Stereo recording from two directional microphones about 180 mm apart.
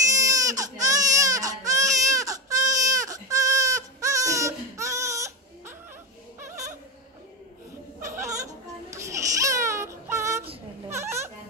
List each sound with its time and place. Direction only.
0.1 s baby cry: 20° right (ahead or behind)
8.1 s baby cry: 15° right (ahead or behind)
10.9 s a sound: 15° right (ahead or behind)